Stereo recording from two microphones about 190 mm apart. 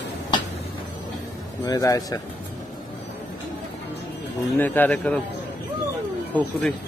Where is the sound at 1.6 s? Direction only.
20° left (ahead or behind).